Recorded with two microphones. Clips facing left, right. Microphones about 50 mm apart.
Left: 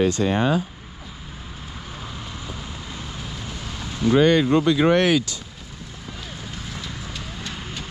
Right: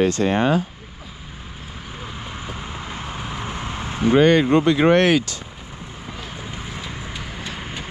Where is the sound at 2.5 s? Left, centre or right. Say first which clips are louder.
Right 3 dB; right.